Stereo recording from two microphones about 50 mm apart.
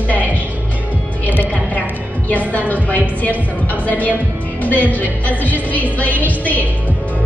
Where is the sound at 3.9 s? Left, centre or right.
Left.